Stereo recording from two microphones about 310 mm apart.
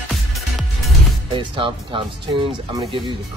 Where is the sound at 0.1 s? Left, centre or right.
Centre.